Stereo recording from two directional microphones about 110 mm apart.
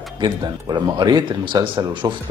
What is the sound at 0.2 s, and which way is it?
Speech, 45° right (ahead or behind).